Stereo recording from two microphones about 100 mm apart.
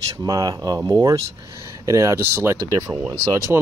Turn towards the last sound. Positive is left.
turn(degrees=-30)  # may be behind; listen again after turning